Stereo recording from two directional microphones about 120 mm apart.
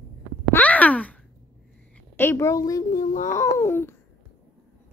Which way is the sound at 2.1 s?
20° left (ahead or behind).